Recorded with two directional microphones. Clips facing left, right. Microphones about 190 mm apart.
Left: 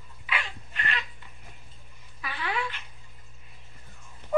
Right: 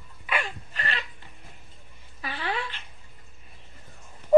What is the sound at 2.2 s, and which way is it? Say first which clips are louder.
Dog: right 1 dB; 30° right (ahead or behind).